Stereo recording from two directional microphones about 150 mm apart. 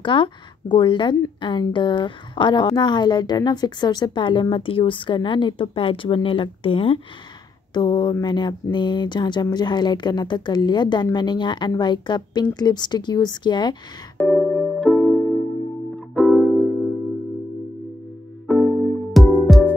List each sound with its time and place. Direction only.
0.0 s a woman's voice: 35° left (ahead or behind)
14.2 s music: 10° left (ahead or behind)
18.5 s music: centre (ahead or behind)